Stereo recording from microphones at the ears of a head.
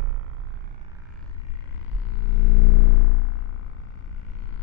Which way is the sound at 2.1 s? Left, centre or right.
Left.